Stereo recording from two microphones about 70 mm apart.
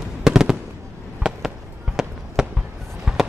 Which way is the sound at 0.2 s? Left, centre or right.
Centre.